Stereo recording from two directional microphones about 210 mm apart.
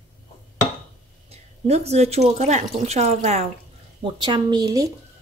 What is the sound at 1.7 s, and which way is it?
Speech, 30° right (ahead or behind).